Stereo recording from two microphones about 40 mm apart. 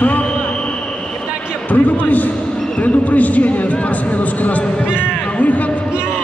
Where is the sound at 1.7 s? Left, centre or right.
Left.